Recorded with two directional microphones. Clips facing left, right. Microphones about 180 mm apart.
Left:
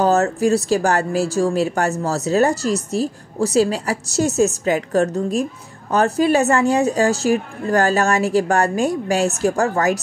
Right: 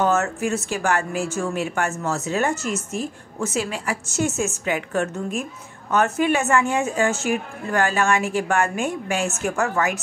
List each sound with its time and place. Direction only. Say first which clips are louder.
0.0 s speech: left 5 dB; 35° left (ahead or behind)